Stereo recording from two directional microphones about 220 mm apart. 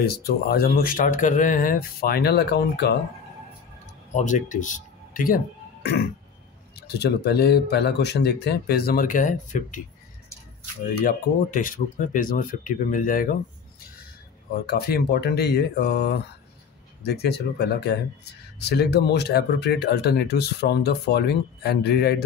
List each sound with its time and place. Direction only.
0.0 s speech: 45° left (ahead or behind)
4.1 s speech: 35° left (ahead or behind)
11.1 s speech: 40° left (ahead or behind)
14.7 s speech: 45° left (ahead or behind)